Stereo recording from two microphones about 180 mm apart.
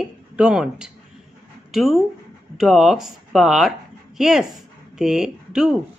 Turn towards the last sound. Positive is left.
turn(degrees=-5)  # may be behind; listen again after turning